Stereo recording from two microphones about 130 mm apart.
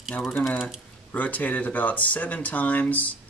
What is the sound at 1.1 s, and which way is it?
Speech, 10° left (ahead or behind).